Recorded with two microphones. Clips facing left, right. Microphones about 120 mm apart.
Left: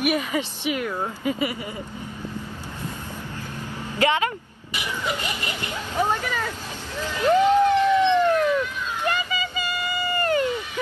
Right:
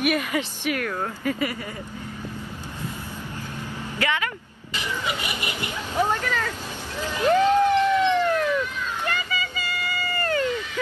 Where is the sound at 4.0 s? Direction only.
20° left (ahead or behind).